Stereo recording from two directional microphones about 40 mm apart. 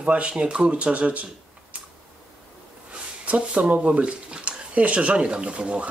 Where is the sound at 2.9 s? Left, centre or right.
Right.